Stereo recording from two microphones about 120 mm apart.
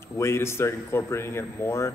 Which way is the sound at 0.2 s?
20° left (ahead or behind).